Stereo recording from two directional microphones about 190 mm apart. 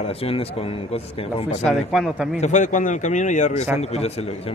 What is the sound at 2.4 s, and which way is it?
A man's voice, 40° left (ahead or behind).